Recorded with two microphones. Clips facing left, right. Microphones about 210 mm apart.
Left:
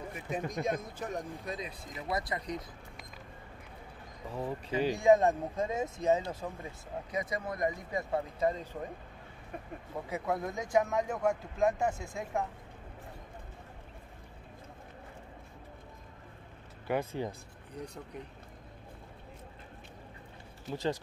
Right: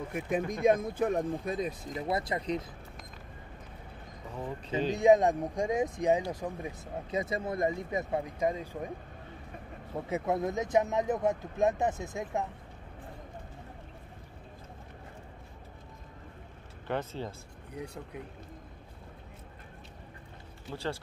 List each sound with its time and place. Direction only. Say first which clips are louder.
0.1 s speech: right 5 dB; 60° right (ahead or behind)
2.0 s speech: right 3 dB; 25° right (ahead or behind)
4.8 s speech: right 2 dB; 20° right (ahead or behind)
10.0 s speech: right 4 dB; 25° right (ahead or behind)
16.8 s speech: left 2 dB; 10° left (ahead or behind)
17.7 s speech: right 2 dB; 10° right (ahead or behind)
20.7 s speech: left 3 dB; 15° left (ahead or behind)